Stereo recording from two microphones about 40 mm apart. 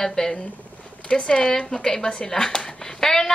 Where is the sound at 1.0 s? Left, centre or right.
Left.